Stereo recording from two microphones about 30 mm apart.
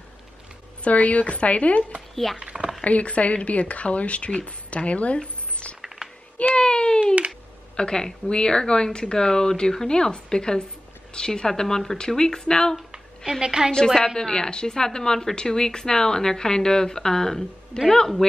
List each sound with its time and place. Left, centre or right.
0.8 s speech: left
2.3 s a sound: right
2.8 s speech: left
6.6 s a sound: left
7.7 s speech: left
13.4 s a woman's voice: right
13.8 s a woman's voice: centre
14.1 s speech: centre
17.7 s speech: left